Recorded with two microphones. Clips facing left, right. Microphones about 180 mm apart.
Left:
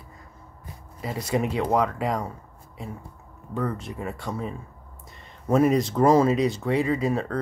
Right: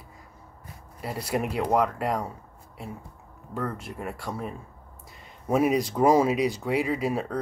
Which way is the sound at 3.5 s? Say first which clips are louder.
Left 3 dB; 5° right (ahead or behind).